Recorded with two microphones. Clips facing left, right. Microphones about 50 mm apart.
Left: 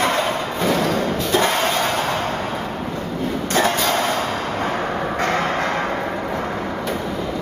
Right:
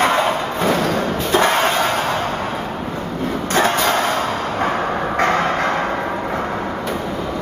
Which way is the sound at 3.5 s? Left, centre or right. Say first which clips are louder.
Right 2 dB; right.